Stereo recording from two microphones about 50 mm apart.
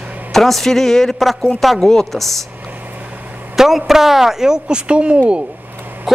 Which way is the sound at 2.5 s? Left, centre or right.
Right.